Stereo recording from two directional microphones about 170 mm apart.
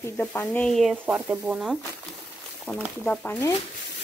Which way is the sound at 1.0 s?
10° right (ahead or behind).